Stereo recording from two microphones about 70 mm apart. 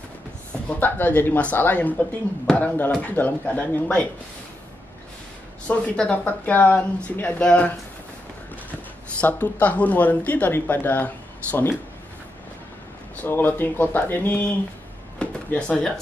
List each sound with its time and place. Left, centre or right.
0.7 s speech: left
5.7 s speech: centre
9.2 s speech: left
13.1 s speech: left
15.1 s a sound: centre